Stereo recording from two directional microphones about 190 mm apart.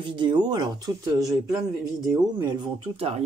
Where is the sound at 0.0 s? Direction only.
25° right (ahead or behind).